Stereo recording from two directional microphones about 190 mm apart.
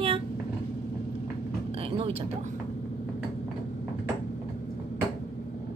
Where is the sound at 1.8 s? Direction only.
30° right (ahead or behind).